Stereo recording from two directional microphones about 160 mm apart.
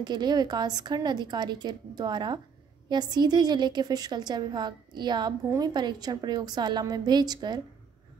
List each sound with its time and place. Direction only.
0.0 s a woman's voice: 25° right (ahead or behind)